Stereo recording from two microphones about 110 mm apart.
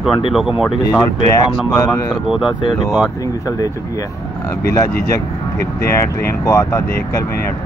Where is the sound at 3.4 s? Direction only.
35° left (ahead or behind).